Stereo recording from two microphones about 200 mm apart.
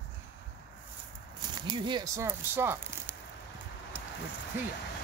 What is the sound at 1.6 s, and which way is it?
Speech, 25° right (ahead or behind).